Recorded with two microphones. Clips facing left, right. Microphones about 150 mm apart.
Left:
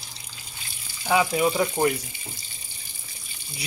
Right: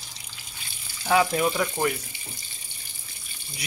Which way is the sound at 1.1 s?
10° left (ahead or behind).